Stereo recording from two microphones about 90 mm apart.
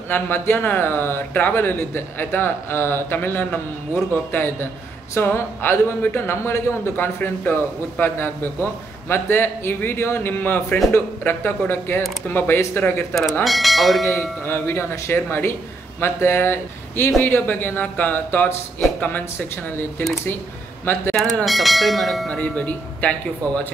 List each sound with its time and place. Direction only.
0.1 s a man's voice: 20° left (ahead or behind)
13.1 s speech: centre (ahead or behind)
14.0 s a man's voice: 25° left (ahead or behind)
20.8 s a man's voice: 20° left (ahead or behind)
21.5 s speech: centre (ahead or behind)
22.3 s speech: 15° left (ahead or behind)